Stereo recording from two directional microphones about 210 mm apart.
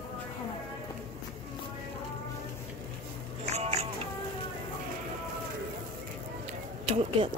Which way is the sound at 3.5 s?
30° right (ahead or behind).